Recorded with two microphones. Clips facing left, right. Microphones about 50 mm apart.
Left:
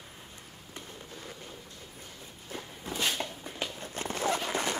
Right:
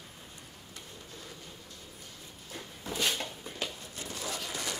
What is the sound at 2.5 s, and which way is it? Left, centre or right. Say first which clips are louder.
Walk: left 3 dB; left.